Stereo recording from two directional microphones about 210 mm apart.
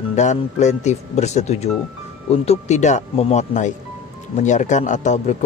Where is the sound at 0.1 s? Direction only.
35° left (ahead or behind).